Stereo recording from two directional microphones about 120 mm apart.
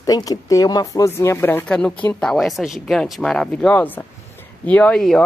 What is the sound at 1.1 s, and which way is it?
Speech, 20° left (ahead or behind).